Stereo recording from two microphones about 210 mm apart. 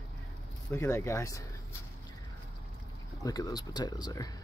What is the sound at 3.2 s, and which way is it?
Speech, 20° left (ahead or behind).